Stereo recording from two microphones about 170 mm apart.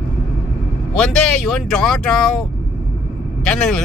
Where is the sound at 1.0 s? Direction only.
5° left (ahead or behind).